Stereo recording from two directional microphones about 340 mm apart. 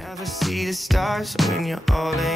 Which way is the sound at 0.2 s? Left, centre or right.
Centre.